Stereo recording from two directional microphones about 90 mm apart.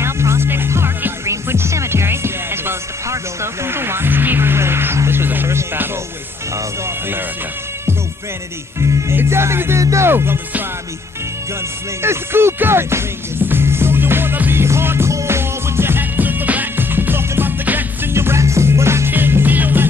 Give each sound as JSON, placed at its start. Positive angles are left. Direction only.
{"t": 0.0, "sound": "music", "side_deg": -30}
{"t": 8.7, "sound": "music", "side_deg": -35}
{"t": 12.0, "sound": "music", "side_deg": -25}